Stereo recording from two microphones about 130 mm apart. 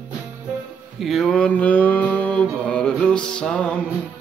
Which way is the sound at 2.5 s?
10° left (ahead or behind).